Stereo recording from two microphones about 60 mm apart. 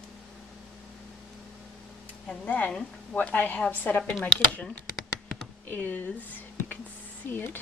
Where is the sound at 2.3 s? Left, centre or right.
Left.